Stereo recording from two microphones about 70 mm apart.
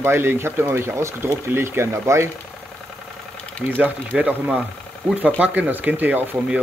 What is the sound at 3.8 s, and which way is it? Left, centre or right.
Speech, right.